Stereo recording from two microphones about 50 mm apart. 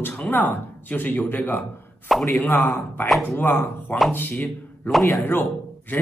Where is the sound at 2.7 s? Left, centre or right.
Left.